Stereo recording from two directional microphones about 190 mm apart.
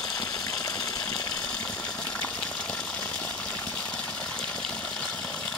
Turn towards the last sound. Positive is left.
turn(degrees=5)  # may be behind; listen again after turning